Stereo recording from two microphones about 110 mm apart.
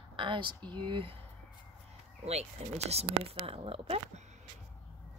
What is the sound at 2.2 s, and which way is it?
Speech, 75° right (ahead or behind).